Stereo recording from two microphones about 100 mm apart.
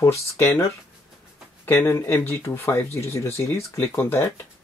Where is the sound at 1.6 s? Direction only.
25° left (ahead or behind).